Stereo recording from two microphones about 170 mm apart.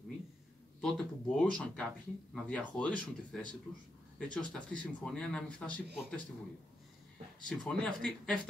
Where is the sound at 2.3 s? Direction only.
5° left (ahead or behind).